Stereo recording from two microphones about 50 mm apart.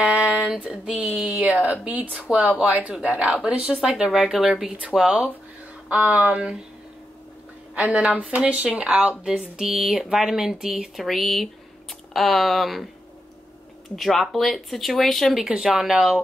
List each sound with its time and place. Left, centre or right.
0.0 s a sound: right
2.1 s speech: right; by 4.6 s centre
4.6 s speech: right
4.9 s speech: centre
5.9 s speech: right
7.7 s speech: right
9.0 s speech: centre
11.1 s speech: centre
13.9 s speech: centre
15.4 s speech: centre